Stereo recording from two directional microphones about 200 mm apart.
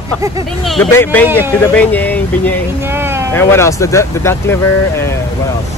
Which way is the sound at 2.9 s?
10° right (ahead or behind).